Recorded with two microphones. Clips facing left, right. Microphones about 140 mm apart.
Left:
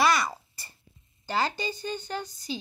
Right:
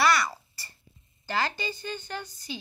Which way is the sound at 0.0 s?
20° left (ahead or behind).